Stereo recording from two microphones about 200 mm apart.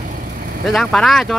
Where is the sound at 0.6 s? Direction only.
5° left (ahead or behind).